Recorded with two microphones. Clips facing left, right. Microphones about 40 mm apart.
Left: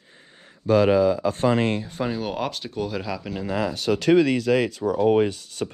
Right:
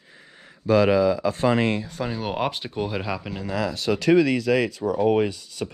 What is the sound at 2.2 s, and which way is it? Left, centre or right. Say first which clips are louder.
Speech: right 1 dB; centre.